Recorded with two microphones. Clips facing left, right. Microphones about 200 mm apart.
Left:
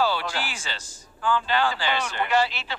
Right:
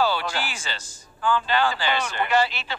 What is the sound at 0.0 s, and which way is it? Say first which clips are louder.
Speech: right 1 dB; 55° right (ahead or behind).